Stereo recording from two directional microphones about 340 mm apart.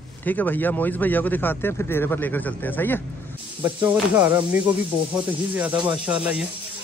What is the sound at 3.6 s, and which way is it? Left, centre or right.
Speech, centre.